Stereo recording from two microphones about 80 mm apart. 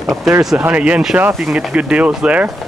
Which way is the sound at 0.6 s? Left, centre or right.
Centre.